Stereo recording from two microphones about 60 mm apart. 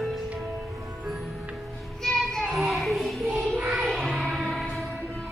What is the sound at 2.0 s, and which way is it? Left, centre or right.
Child singing, centre.